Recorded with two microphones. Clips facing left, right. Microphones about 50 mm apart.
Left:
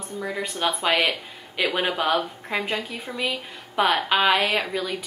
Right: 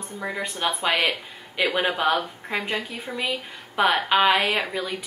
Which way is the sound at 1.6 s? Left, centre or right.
Centre.